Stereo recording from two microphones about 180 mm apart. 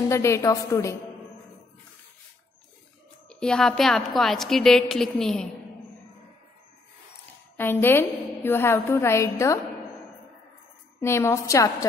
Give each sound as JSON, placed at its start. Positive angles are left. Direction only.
{"t": 0.1, "sound": "a woman's voice", "side_deg": 15}
{"t": 3.3, "sound": "a woman's voice", "side_deg": 5}
{"t": 7.5, "sound": "a woman's voice", "side_deg": 10}
{"t": 11.0, "sound": "a woman's voice", "side_deg": 15}